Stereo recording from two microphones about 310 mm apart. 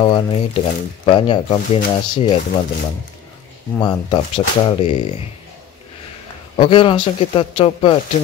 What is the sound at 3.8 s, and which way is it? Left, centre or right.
Speech, centre.